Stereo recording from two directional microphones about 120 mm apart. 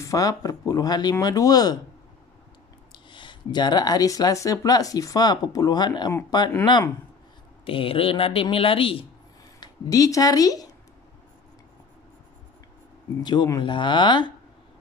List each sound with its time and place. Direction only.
0.0 s speech: 30° left (ahead or behind)
2.9 s speech: 40° left (ahead or behind)
7.6 s speech: 50° left (ahead or behind)
9.6 s speech: 30° left (ahead or behind)
13.2 s speech: 40° left (ahead or behind)